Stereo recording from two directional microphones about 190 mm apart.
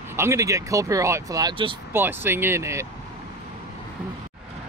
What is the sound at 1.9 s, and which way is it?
Speech, 10° right (ahead or behind).